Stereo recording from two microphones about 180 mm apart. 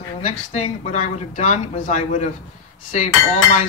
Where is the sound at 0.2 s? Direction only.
40° left (ahead or behind).